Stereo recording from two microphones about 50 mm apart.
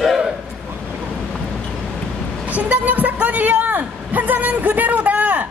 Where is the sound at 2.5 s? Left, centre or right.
Right.